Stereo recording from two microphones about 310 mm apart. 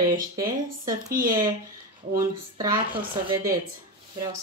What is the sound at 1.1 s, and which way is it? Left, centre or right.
Speech, right.